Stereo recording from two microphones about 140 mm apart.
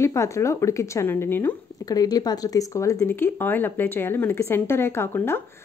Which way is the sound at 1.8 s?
25° left (ahead or behind).